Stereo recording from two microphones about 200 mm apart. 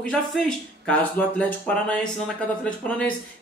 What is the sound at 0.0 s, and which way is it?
Speech, 5° left (ahead or behind).